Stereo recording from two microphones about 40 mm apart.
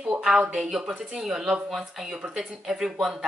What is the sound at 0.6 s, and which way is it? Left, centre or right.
Speech, centre.